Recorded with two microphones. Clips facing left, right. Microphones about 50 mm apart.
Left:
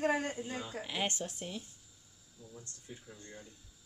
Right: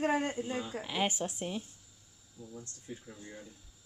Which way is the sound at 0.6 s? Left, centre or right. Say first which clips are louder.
Right 2 dB; centre.